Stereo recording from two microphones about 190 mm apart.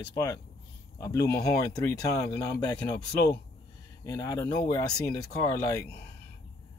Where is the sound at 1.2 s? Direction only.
60° left (ahead or behind).